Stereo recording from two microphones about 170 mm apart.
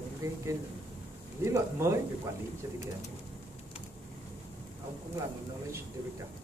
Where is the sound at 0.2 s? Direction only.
20° right (ahead or behind).